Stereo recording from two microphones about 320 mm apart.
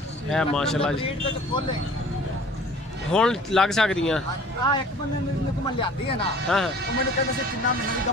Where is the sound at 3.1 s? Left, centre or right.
Centre.